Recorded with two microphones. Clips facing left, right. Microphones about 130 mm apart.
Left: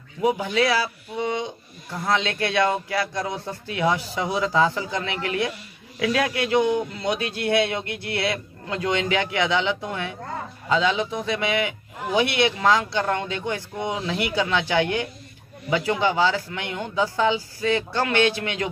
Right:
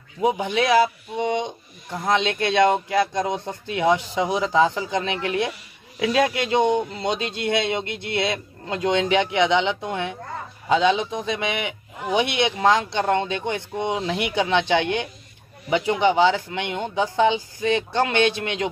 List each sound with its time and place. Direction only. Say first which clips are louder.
0.2 s a man's voice: even; 20° right (ahead or behind)